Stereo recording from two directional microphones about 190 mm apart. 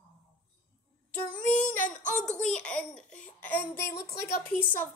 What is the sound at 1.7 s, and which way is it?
Speech, 45° left (ahead or behind).